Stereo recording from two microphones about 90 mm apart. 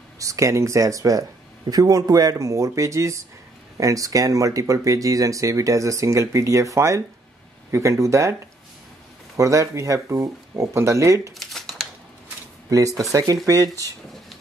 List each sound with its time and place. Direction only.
0.2 s speech: 35° right (ahead or behind)
9.4 s speech: 35° right (ahead or behind)
11.3 s shuffling cards: centre (ahead or behind)
12.6 s speech: 40° right (ahead or behind)